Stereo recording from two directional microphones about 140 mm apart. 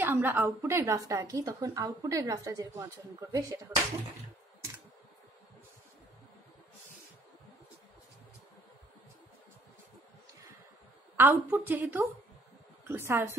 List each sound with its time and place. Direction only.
0.0 s a woman's voice: 15° right (ahead or behind)
11.1 s a woman's voice: 15° right (ahead or behind)